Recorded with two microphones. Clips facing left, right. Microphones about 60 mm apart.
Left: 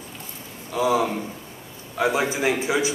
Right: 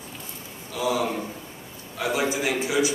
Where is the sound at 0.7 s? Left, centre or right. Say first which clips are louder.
Left 4 dB; left.